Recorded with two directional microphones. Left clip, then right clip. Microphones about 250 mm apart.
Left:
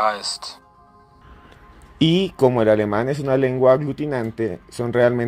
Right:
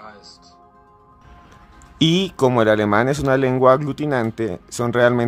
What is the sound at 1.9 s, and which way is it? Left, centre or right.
Speech, centre.